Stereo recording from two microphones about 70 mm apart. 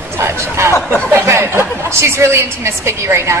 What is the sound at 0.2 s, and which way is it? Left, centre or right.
A woman's voice, right.